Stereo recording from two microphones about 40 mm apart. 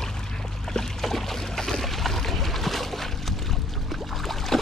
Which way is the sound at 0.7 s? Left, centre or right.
Centre.